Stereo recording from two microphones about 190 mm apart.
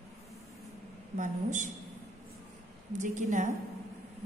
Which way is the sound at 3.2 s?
40° right (ahead or behind).